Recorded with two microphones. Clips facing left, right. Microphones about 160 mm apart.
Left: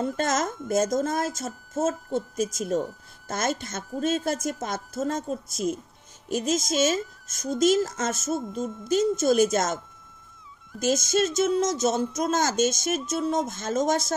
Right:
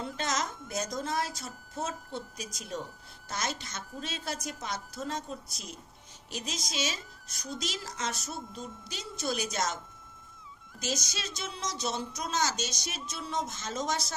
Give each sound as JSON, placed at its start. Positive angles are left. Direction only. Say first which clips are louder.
{"t": 0.0, "sound": "a woman's voice", "louder": "left 8 dB", "side_deg": 50}
{"t": 10.8, "sound": "a woman's voice", "louder": "left 13 dB", "side_deg": 50}